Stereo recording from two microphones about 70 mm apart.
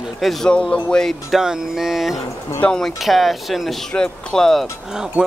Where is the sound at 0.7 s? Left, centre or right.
Centre.